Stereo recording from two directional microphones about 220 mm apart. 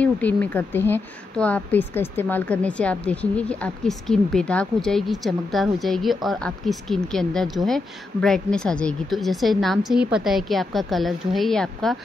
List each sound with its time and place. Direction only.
0.0 s a woman's voice: 5° left (ahead or behind)